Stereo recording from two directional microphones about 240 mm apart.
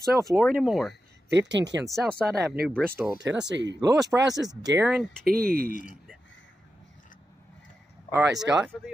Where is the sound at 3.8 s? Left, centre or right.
Centre.